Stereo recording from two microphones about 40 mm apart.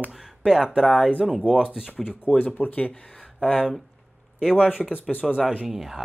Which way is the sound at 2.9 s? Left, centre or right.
Left.